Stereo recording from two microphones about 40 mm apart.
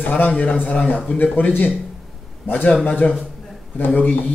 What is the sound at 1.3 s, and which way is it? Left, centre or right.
Speech, left.